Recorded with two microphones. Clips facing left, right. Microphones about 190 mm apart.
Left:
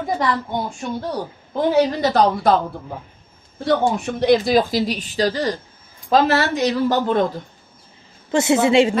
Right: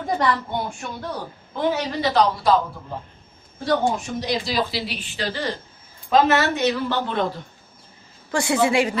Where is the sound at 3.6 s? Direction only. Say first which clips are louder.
Left 3 dB; 60° left (ahead or behind); by 7.2 s 45° left (ahead or behind).